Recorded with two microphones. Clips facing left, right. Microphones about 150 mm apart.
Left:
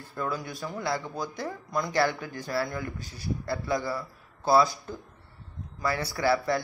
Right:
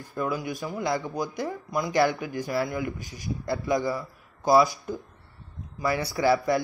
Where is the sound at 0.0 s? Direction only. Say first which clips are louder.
Right 3 dB; 15° right (ahead or behind).